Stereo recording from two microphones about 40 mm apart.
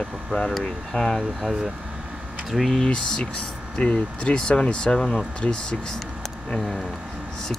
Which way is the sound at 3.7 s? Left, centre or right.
Left.